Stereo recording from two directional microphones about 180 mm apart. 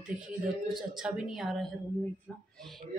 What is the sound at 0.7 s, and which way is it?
A woman's voice, 5° right (ahead or behind).